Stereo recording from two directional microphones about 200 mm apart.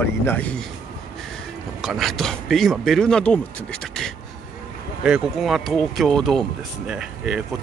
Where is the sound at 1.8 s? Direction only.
Centre (ahead or behind).